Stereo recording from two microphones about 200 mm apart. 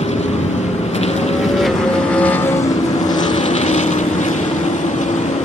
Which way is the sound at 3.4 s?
35° left (ahead or behind).